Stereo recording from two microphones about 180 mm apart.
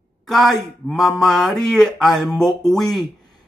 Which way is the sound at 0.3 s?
Centre (ahead or behind).